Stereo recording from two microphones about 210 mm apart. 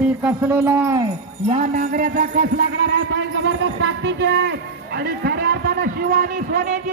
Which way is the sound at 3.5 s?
65° right (ahead or behind).